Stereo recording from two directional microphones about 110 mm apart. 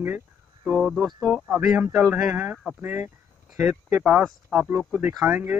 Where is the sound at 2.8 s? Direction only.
20° right (ahead or behind).